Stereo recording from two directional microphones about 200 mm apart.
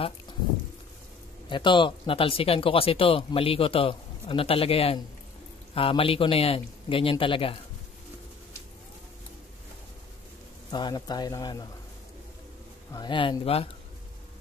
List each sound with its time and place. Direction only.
1.5 s speech: 25° left (ahead or behind)
10.7 s speech: 20° left (ahead or behind)
12.9 s speech: 25° left (ahead or behind)